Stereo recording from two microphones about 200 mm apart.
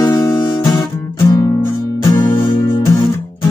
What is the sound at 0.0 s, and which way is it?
Guitar, 15° left (ahead or behind).